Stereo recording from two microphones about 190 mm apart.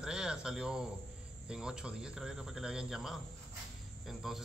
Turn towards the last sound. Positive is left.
turn(degrees=0)  # may be behind; listen again after turning